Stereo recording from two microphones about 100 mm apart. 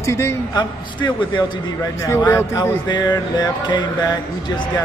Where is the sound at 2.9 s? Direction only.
45° left (ahead or behind).